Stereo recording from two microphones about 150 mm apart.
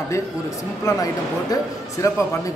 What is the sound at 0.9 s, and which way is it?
Speech, 20° left (ahead or behind).